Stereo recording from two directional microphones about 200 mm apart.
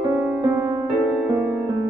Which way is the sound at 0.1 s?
5° right (ahead or behind).